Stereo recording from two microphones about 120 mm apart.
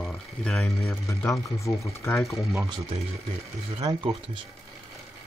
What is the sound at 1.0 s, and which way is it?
Speech, 25° left (ahead or behind).